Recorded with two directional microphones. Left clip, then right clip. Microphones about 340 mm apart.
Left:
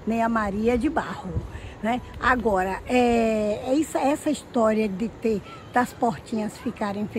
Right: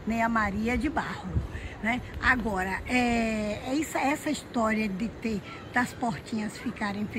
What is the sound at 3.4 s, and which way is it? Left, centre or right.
Speech, centre.